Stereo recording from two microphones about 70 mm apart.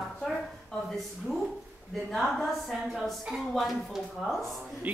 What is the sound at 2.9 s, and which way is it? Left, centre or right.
A woman's voice, centre.